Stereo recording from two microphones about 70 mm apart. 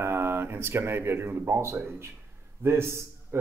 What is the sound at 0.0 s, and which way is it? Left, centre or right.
Speech, right.